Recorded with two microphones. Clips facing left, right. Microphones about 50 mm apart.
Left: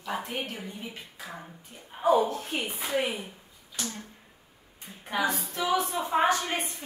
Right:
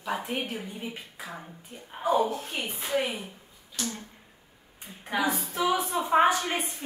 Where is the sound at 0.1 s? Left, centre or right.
Centre.